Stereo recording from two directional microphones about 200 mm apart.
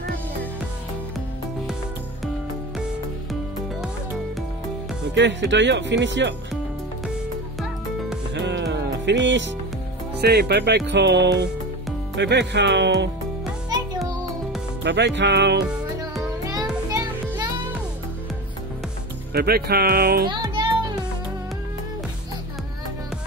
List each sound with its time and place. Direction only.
5.1 s speech: 65° right (ahead or behind)
8.4 s music: 60° right (ahead or behind)
10.1 s speech: 55° right (ahead or behind)
14.8 s speech: 60° right (ahead or behind)
19.3 s speech: 50° right (ahead or behind)
20.2 s music: 25° right (ahead or behind)